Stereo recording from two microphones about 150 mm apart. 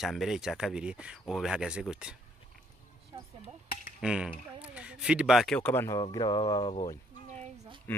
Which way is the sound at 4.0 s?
5° right (ahead or behind).